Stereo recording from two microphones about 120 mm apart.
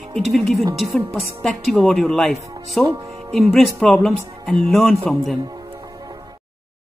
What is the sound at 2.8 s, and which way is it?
Music, 25° right (ahead or behind).